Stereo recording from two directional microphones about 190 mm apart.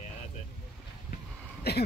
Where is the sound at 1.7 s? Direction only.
60° left (ahead or behind).